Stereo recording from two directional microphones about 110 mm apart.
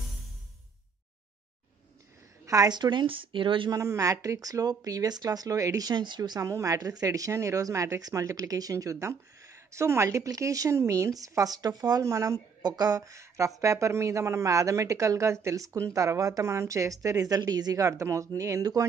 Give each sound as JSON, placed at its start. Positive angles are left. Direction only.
{"t": 2.4, "sound": "a woman's voice", "side_deg": -35}
{"t": 3.7, "sound": "speech", "side_deg": -30}